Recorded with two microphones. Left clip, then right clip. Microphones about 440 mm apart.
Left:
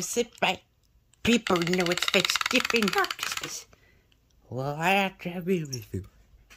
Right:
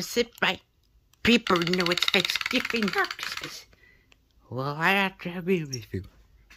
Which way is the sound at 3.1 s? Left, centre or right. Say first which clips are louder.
Left 2 dB; left.